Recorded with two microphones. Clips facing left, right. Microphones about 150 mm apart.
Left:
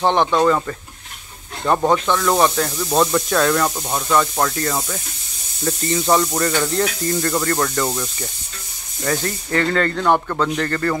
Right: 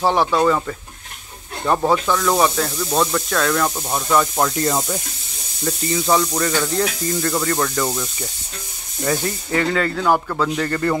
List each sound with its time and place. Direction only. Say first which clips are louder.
0.0 s speech: left 1 dB; 5° right (ahead or behind)
4.6 s speech: right 3 dB; 20° right (ahead or behind)
5.6 s speech: left 1 dB; 5° right (ahead or behind)
9.0 s speech: right 1 dB; 10° right (ahead or behind)